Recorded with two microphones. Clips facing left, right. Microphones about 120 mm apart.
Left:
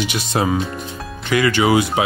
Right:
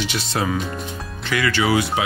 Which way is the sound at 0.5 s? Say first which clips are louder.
Left 3 dB; centre (ahead or behind).